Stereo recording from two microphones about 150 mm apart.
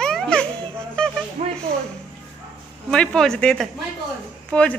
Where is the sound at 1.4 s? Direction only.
55° right (ahead or behind).